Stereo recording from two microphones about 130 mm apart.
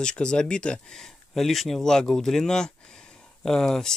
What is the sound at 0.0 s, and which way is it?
Speech, 5° left (ahead or behind).